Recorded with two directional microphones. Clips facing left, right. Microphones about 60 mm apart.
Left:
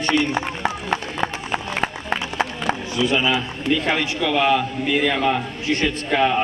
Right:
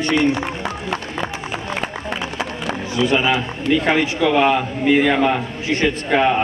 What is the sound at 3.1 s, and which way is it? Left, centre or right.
A man's voice, right.